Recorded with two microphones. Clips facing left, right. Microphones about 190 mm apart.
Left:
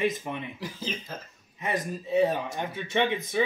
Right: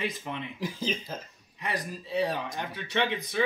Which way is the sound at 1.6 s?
20° left (ahead or behind).